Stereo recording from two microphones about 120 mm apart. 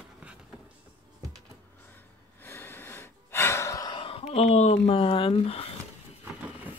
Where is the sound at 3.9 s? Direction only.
55° left (ahead or behind).